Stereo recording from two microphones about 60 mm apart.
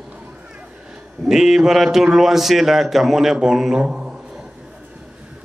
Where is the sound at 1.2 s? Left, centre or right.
Centre.